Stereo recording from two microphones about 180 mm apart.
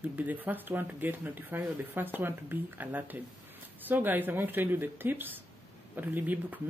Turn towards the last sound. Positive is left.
turn(degrees=-10)  # may be behind; listen again after turning